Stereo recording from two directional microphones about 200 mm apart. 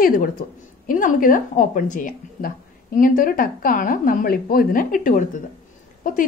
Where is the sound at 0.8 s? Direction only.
45° left (ahead or behind).